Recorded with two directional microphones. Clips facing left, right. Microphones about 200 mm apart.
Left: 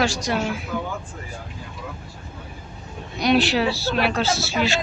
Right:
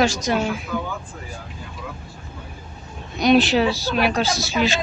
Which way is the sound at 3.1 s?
20° right (ahead or behind).